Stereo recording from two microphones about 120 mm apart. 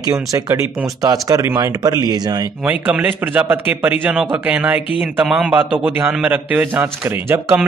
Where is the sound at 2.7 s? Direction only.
15° right (ahead or behind).